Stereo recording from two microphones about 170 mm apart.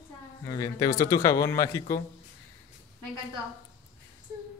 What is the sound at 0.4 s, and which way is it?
Speech, 20° left (ahead or behind).